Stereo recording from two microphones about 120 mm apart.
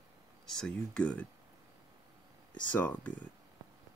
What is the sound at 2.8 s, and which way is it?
Speech, 15° left (ahead or behind).